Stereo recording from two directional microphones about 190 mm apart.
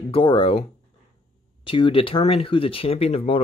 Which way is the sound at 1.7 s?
25° left (ahead or behind).